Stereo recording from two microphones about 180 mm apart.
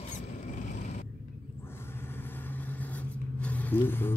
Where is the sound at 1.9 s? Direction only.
10° left (ahead or behind).